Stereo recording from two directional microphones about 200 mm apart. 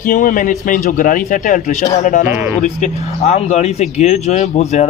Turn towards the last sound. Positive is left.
turn(degrees=35)  # may be behind; listen again after turning